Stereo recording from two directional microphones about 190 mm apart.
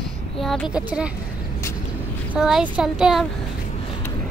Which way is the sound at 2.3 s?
5° right (ahead or behind).